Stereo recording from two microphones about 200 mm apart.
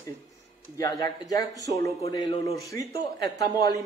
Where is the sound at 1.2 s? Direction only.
20° left (ahead or behind).